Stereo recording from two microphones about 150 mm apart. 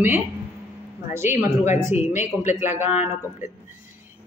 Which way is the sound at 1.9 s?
50° left (ahead or behind).